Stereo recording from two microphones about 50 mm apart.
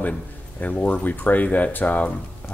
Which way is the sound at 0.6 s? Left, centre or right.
Left.